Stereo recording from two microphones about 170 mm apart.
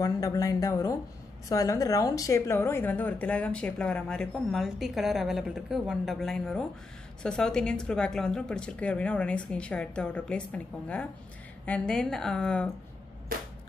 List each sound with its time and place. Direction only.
0.0 s speech: 20° left (ahead or behind); by 12.7 s 5° left (ahead or behind)